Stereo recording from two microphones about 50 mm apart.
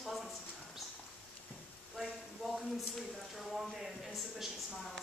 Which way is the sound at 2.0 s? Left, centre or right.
Centre.